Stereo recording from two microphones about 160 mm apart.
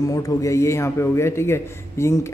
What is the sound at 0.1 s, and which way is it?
A man's voice, 20° left (ahead or behind).